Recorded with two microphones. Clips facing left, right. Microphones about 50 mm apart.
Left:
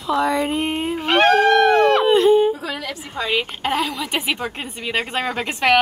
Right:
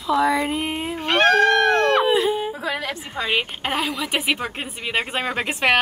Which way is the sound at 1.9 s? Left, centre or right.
Centre.